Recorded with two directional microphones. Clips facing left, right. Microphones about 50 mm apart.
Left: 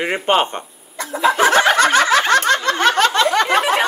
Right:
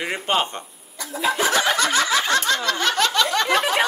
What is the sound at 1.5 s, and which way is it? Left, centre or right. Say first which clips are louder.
Snicker: left 7 dB; left.